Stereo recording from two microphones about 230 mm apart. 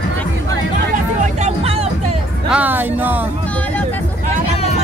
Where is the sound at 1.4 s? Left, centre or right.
Right.